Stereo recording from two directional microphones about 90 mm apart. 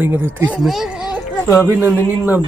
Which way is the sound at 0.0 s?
25° right (ahead or behind).